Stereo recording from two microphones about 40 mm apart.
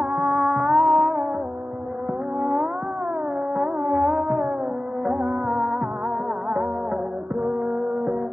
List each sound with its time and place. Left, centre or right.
0.0 s music: right
0.3 s music: centre
2.4 s music: centre